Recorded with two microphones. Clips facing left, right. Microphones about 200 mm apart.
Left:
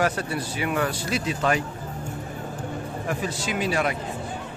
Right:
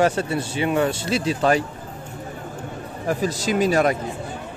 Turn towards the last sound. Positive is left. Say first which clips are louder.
# right 6 dB
turn(degrees=-45)  # may be behind; listen again after turning